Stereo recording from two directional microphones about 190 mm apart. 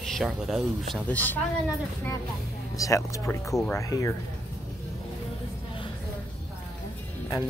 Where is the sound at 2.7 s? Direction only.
15° left (ahead or behind).